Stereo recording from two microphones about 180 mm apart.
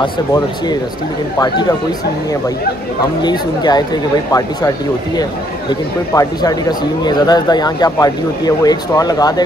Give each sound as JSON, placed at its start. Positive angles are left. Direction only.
{"t": 0.0, "sound": "speech", "side_deg": 25}
{"t": 3.2, "sound": "speech", "side_deg": 25}